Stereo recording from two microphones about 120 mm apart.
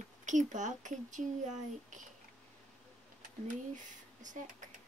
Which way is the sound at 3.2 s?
90° right.